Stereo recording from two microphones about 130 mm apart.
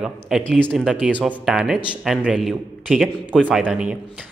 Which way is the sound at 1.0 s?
10° right (ahead or behind).